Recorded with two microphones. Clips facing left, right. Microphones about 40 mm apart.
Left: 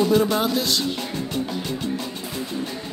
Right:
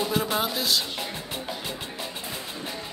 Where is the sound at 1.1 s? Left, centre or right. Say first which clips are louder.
Left 7 dB; centre.